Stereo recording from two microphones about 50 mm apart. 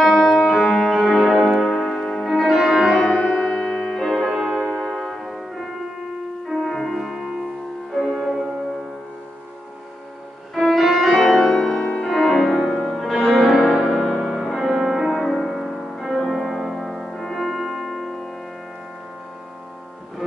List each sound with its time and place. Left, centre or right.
0.0 s music: centre
1.7 s music: centre
2.2 s music: centre
3.0 s music: centre
4.7 s music: centre
6.7 s music: centre
10.5 s music: centre
11.8 s music: left
12.1 s music: centre